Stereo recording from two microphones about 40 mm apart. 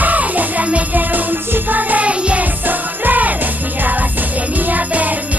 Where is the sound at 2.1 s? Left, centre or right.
Right.